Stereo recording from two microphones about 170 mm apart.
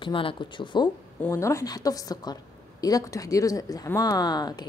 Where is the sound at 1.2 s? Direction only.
15° left (ahead or behind).